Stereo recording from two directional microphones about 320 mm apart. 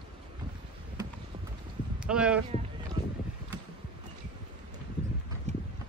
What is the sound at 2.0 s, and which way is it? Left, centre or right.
Speech, centre.